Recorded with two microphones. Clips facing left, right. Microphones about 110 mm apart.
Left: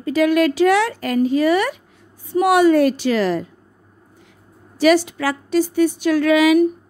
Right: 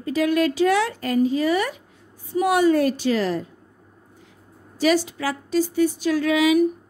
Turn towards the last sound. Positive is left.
turn(degrees=65)  # may be behind; listen again after turning